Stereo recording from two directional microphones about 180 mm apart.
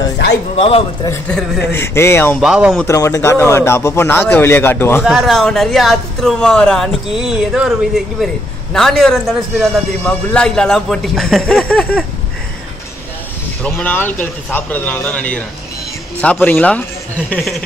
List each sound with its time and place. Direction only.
0.6 s a man's voice: 35° left (ahead or behind)
1.3 s a man's voice: 5° left (ahead or behind)
2.4 s speech: 5° right (ahead or behind)
2.9 s a man's voice: 15° left (ahead or behind)
5.0 s speech: centre (ahead or behind)
13.6 s a man's voice: 5° left (ahead or behind)